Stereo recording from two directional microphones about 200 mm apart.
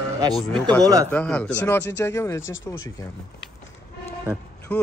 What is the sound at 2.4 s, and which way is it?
Speech, 75° left (ahead or behind).